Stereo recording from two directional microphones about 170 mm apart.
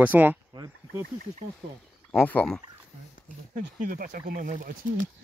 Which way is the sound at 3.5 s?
50° right (ahead or behind).